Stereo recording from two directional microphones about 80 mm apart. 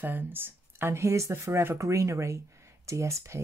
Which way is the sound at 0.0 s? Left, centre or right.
Right.